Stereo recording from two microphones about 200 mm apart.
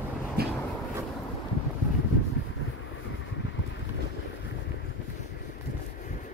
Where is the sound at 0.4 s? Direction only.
50° right (ahead or behind).